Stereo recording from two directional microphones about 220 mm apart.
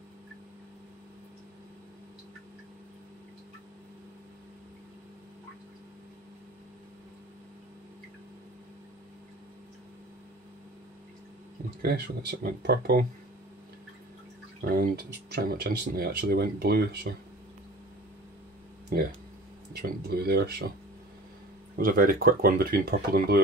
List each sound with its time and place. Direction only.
11.8 s speech: 45° right (ahead or behind)
14.6 s speech: 45° right (ahead or behind)
18.9 s speech: 45° right (ahead or behind)
21.7 s speech: 40° right (ahead or behind)